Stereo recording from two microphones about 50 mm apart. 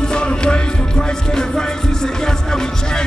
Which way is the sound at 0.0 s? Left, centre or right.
Centre.